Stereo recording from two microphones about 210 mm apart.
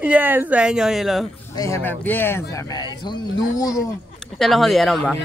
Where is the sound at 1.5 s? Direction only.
15° left (ahead or behind).